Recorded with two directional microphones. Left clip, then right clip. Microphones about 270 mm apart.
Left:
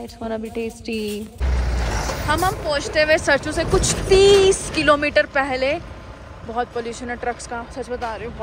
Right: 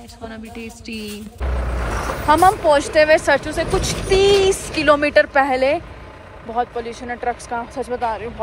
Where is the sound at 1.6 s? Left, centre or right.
Centre.